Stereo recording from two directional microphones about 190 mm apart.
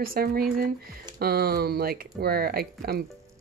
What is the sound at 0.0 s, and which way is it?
Speech, 50° right (ahead or behind).